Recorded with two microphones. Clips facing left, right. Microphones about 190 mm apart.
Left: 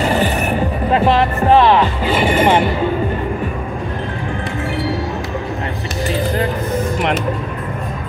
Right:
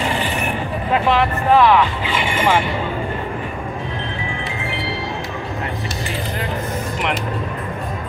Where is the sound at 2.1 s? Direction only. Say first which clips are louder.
Left 7 dB; 40° left (ahead or behind).